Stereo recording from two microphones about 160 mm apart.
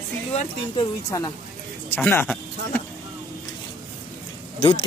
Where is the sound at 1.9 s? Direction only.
15° left (ahead or behind).